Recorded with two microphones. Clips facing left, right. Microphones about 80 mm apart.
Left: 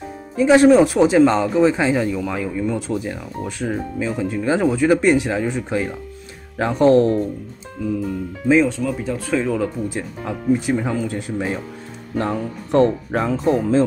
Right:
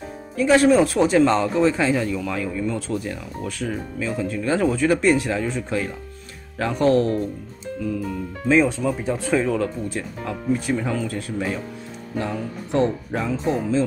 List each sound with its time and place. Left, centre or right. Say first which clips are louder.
0.4 s speech: left 4 dB; left
8.6 s speech: left 1 dB; centre
9.3 s speech: left 1 dB; centre
9.8 s speech: left 2 dB; centre
12.2 s speech: left 4 dB; left